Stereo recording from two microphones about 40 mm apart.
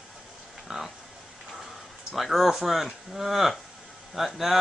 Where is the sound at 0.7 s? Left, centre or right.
Centre.